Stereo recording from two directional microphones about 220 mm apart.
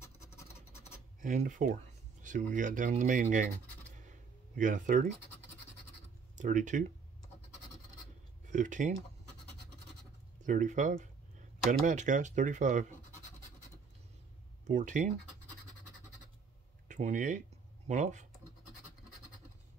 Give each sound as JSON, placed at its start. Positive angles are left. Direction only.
{"t": 0.0, "sound": "scratch", "side_deg": 10}
{"t": 1.2, "sound": "speech", "side_deg": -35}
{"t": 3.9, "sound": "a sound", "side_deg": -35}
{"t": 6.3, "sound": "speech", "side_deg": -35}
{"t": 8.5, "sound": "speech", "side_deg": -35}
{"t": 10.4, "sound": "speech", "side_deg": -35}
{"t": 14.7, "sound": "speech", "side_deg": -35}
{"t": 16.8, "sound": "speech", "side_deg": -35}